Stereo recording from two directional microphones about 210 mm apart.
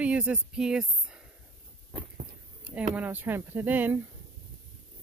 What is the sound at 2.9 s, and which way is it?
Speech, 10° right (ahead or behind).